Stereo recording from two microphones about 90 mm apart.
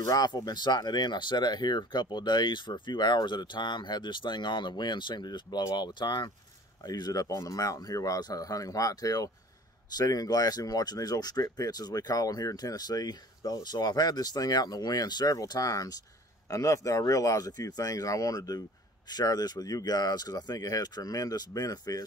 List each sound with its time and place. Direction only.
0.0 s speech: 45° left (ahead or behind)
6.8 s speech: 45° left (ahead or behind)